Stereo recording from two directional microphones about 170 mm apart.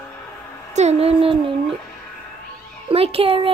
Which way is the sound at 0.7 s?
40° right (ahead or behind).